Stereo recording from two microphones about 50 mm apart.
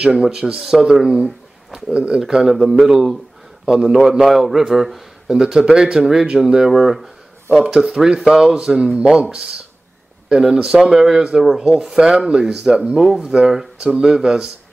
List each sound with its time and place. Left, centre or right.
0.2 s speech: centre
1.2 s a sound: centre
2.0 s speech: centre
4.1 s speech: centre